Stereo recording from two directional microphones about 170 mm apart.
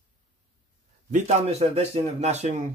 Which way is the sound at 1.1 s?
40° right (ahead or behind).